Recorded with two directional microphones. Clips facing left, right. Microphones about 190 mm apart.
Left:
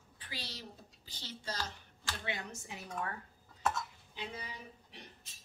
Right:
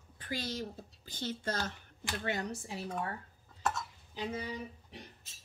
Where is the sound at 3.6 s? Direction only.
Centre (ahead or behind).